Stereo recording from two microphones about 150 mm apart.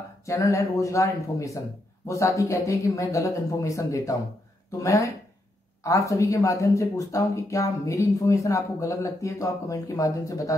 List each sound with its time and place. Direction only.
0.2 s speech: 20° left (ahead or behind)